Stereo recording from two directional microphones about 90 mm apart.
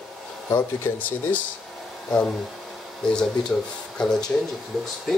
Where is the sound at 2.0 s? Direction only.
10° left (ahead or behind).